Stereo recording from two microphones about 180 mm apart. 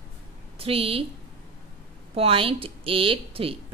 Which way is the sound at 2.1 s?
30° right (ahead or behind).